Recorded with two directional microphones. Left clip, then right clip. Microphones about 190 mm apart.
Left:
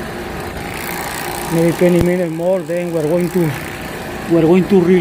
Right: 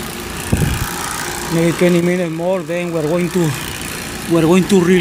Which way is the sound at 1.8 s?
15° right (ahead or behind).